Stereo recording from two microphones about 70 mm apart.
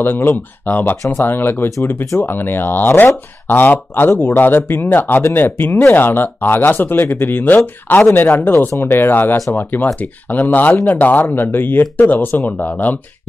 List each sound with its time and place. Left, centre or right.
0.0 s speech: left